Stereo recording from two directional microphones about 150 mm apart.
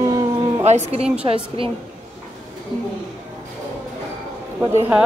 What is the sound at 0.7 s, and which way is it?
Speech, 45° right (ahead or behind).